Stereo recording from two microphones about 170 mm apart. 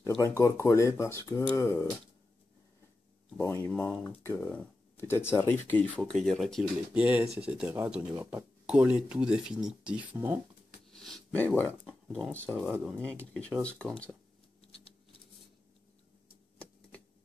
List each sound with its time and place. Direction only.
0.0 s speech: 20° left (ahead or behind)
3.3 s speech: 10° left (ahead or behind)
6.9 s speech: 10° right (ahead or behind)
10.9 s speech: 5° left (ahead or behind)